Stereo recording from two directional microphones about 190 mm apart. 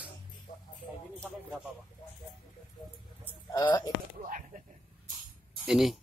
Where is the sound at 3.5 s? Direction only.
20° left (ahead or behind).